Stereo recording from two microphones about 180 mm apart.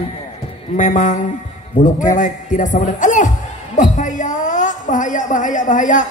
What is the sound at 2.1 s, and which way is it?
Music, 45° left (ahead or behind).